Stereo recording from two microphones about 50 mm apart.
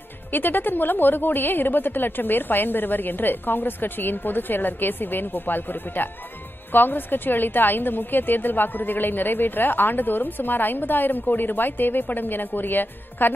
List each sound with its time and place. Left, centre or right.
0.3 s a woman's voice: left